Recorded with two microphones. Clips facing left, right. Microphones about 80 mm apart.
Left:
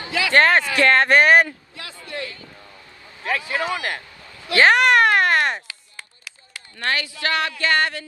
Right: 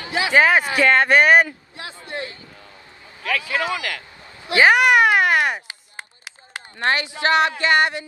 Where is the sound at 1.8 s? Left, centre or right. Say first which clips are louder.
Right 2 dB; right.